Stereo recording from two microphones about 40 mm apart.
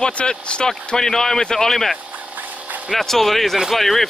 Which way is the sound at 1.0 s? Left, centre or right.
Centre.